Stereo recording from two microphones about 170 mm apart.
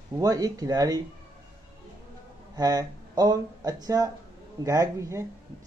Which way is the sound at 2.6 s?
25° right (ahead or behind).